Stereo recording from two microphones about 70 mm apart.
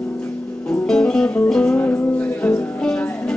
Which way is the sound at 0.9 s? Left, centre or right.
Centre.